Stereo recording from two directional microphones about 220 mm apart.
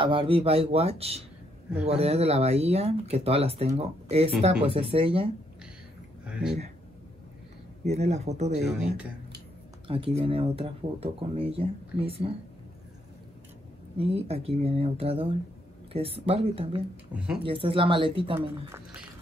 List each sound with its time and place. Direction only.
0.0 s speech: 25° right (ahead or behind)
6.2 s speech: 5° right (ahead or behind)
7.8 s speech: 30° right (ahead or behind)
9.8 s speech: 25° right (ahead or behind)
13.9 s speech: 25° right (ahead or behind)